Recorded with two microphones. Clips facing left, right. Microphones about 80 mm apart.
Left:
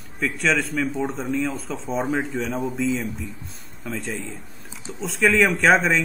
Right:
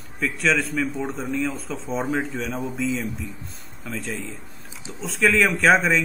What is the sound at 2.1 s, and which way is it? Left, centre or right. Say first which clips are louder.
Speech: left 1 dB; left.